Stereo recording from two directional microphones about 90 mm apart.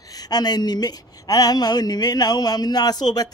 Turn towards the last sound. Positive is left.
turn(degrees=50)  # may be behind; listen again after turning